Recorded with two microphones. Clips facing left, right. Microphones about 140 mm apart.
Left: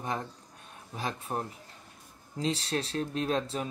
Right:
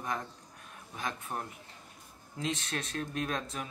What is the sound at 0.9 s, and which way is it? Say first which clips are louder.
Speech: left 4 dB; 30° left (ahead or behind).